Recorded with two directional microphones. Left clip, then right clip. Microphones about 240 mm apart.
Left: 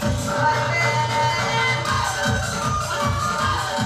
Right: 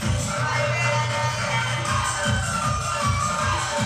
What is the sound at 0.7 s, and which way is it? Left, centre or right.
Music, left.